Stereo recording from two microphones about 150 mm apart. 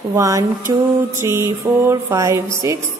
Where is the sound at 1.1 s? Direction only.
15° right (ahead or behind).